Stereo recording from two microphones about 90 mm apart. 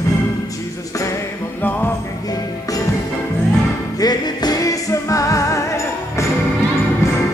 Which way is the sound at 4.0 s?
50° left (ahead or behind).